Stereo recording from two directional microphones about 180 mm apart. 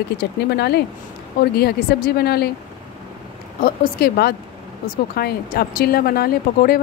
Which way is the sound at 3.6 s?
55° left (ahead or behind).